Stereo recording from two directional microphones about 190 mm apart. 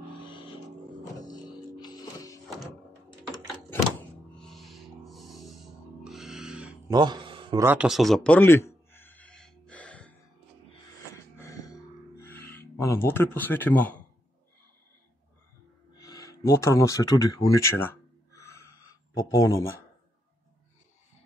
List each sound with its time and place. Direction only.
1.2 s music: 20° left (ahead or behind)
4.4 s music: centre (ahead or behind)
6.9 s a sound: 20° right (ahead or behind)
7.6 s a sound: 5° right (ahead or behind)
11.3 s music: 15° left (ahead or behind)
12.2 s speech: 10° left (ahead or behind)
16.0 s speech: 15° left (ahead or behind)
17.5 s a sound: 15° left (ahead or behind)
19.3 s speech: 15° left (ahead or behind)